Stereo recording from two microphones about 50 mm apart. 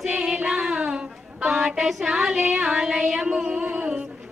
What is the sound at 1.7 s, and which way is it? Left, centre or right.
Child singing, centre.